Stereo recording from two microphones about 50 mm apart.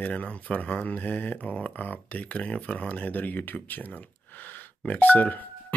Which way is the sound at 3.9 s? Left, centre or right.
Left.